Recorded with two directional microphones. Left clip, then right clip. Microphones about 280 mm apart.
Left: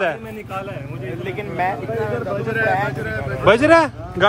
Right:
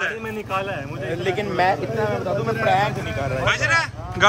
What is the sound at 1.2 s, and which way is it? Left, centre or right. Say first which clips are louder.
Speech: right 2 dB; right.